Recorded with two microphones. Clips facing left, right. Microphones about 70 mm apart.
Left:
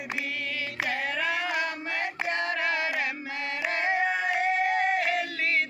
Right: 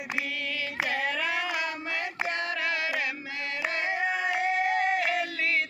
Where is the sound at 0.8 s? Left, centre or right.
Left.